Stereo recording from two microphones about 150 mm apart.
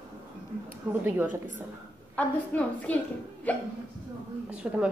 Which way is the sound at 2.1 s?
10° left (ahead or behind).